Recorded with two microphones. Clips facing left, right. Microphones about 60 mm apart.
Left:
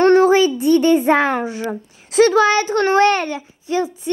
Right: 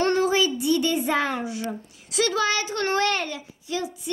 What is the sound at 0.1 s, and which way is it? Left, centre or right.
Child singing, left.